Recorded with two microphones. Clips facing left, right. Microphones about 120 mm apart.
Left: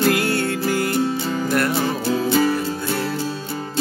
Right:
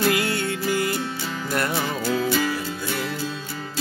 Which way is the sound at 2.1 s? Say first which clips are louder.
Left 4 dB; 30° left (ahead or behind).